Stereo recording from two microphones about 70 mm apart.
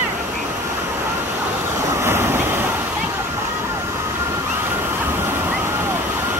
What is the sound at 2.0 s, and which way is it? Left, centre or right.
Vehicle, right.